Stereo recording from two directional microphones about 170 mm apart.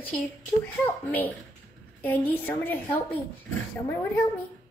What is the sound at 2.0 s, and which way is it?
A woman's voice, 10° left (ahead or behind).